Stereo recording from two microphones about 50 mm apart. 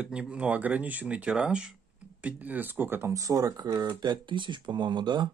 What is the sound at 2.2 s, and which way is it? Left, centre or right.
Speech, right.